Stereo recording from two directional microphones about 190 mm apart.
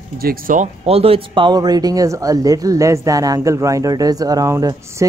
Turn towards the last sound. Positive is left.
turn(degrees=-20)  # may be behind; listen again after turning